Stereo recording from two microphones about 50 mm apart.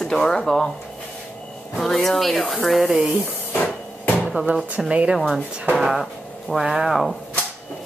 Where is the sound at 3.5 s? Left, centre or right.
Left.